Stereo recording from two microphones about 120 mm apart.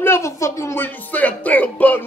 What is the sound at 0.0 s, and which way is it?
Speech, 20° left (ahead or behind).